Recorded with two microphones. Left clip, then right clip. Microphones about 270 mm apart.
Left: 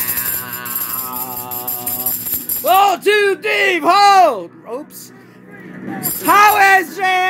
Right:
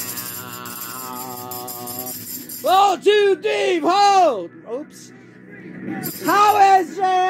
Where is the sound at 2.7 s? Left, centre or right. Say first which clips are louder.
Left 3 dB; left.